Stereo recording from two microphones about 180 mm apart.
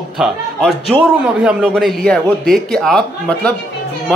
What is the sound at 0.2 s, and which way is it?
A man's voice, centre (ahead or behind).